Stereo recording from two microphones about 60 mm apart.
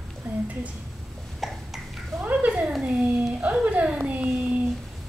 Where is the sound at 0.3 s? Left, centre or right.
Right.